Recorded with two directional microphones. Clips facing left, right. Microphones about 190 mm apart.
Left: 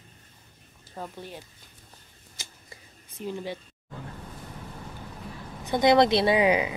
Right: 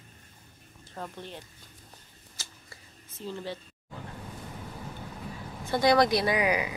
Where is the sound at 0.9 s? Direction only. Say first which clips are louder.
Left 1 dB; 10° left (ahead or behind).